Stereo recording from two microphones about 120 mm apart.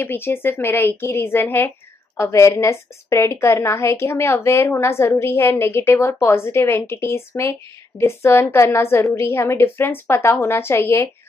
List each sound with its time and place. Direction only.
0.0 s a woman's voice: 20° left (ahead or behind)